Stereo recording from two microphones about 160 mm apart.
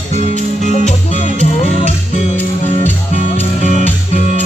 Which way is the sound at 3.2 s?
50° left (ahead or behind).